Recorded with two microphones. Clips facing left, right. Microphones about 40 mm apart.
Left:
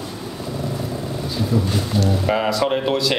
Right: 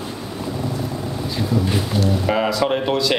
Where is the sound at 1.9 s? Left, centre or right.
Centre.